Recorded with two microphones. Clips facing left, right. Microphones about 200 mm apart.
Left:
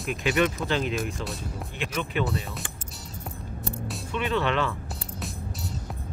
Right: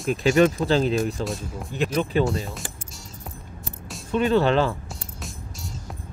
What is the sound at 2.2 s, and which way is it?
Speech, centre (ahead or behind).